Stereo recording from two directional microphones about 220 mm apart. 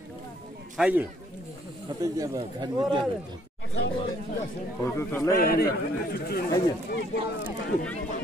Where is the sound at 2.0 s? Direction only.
15° right (ahead or behind).